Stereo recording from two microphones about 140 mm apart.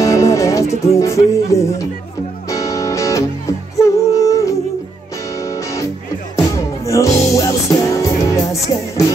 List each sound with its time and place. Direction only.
0.0 s music: 20° left (ahead or behind)
0.9 s speech: 20° left (ahead or behind)
2.5 s music: 25° left (ahead or behind)
6.3 s music: 20° left (ahead or behind)